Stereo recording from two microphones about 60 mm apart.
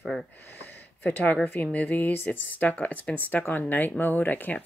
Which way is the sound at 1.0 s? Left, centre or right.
Left.